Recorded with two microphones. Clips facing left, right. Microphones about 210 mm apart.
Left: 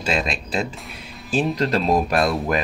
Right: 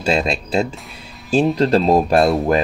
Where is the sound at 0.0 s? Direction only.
30° right (ahead or behind).